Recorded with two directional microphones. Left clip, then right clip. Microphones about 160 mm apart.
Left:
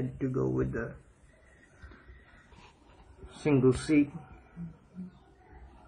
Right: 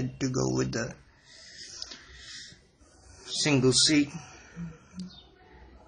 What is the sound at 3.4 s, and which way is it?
Speech, 10° right (ahead or behind).